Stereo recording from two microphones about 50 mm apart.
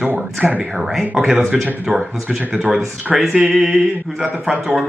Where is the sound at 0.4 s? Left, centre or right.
Right.